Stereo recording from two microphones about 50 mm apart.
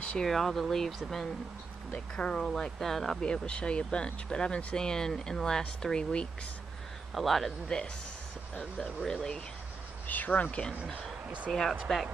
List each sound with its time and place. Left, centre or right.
0.2 s speech: centre
2.0 s speech: centre
3.3 s speech: left
7.2 s speech: centre
7.6 s speech: centre
9.0 s speech: centre
10.0 s speech: left
11.2 s speech: right
11.9 s speech: centre